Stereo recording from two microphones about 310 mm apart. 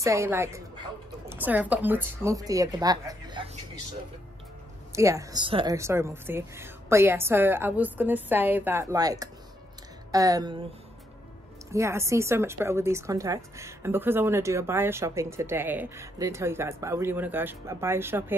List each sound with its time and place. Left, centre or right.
0.0 s a woman's voice: centre
4.9 s a woman's voice: centre
11.7 s a woman's voice: centre